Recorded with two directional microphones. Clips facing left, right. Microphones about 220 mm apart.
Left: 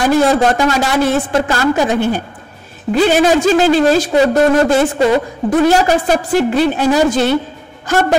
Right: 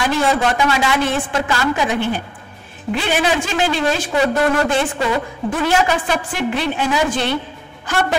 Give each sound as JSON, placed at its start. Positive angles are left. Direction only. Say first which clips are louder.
{"t": 0.0, "sound": "a woman's voice", "louder": "left 6 dB", "side_deg": 40}